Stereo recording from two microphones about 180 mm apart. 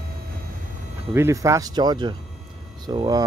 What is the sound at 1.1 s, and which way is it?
Speech, 15° right (ahead or behind).